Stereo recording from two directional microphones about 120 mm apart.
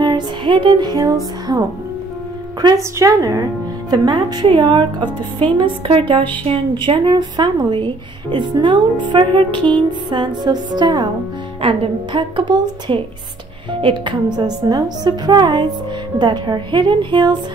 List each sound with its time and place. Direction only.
0.0 s music: 40° right (ahead or behind)
2.6 s a woman's voice: 40° right (ahead or behind)
3.0 s a woman's voice: 25° right (ahead or behind)